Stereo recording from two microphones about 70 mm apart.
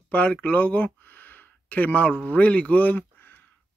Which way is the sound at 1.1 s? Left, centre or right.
Left.